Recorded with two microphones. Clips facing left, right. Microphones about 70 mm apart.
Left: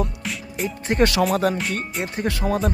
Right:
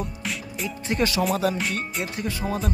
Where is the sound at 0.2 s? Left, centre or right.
Centre.